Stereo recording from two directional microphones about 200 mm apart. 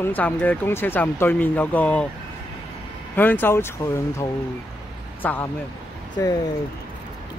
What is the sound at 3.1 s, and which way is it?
A man's voice, 10° left (ahead or behind).